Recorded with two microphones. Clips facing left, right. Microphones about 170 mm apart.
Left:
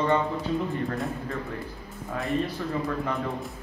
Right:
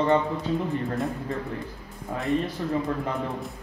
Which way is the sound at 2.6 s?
25° right (ahead or behind).